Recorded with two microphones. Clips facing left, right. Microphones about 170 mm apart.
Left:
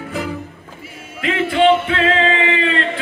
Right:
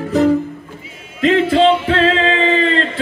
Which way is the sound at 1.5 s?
35° right (ahead or behind).